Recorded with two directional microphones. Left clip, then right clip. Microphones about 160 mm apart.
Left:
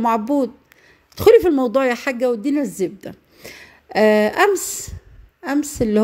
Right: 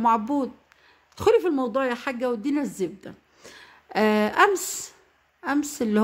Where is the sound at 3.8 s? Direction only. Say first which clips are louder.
Left 8 dB; 20° left (ahead or behind).